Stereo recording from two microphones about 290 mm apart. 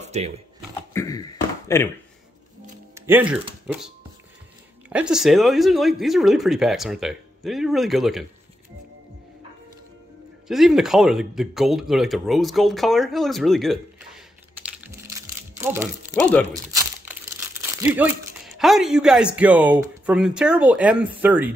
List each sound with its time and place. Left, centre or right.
0.0 s typewriter: right
0.9 s a sound: centre
2.9 s music: centre
3.6 s speech: centre
10.5 s speech: centre
14.8 s music: centre
16.2 s speech: centre
16.7 s speech: centre